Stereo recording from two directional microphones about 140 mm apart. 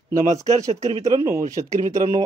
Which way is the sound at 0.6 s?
25° right (ahead or behind).